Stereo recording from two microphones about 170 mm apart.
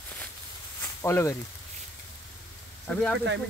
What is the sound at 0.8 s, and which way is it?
Speech, 15° left (ahead or behind).